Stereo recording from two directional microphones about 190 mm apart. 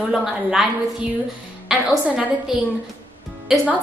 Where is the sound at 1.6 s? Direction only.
5° right (ahead or behind).